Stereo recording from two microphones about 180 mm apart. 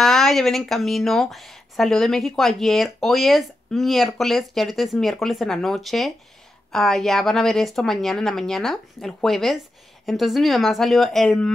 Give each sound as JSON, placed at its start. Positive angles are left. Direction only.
{"t": 0.0, "sound": "speech", "side_deg": 0}